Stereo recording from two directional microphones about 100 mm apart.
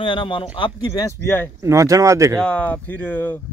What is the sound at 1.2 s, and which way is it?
Speech, 20° left (ahead or behind).